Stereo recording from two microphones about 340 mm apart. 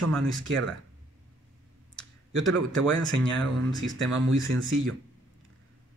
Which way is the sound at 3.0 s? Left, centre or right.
Centre.